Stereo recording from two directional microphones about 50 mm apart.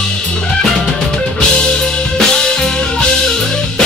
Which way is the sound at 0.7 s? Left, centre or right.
Centre.